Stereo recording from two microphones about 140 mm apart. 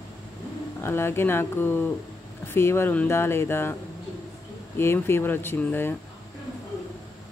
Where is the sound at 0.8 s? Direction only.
15° left (ahead or behind).